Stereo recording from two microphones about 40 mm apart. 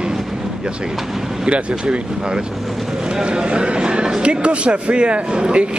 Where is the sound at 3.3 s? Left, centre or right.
Right.